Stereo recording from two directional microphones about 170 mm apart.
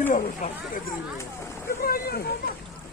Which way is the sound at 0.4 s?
45° left (ahead or behind).